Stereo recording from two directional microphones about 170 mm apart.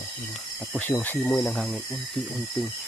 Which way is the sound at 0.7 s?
10° left (ahead or behind).